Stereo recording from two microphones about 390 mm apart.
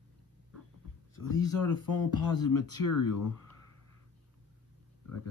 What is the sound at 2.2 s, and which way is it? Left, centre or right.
Speech, left.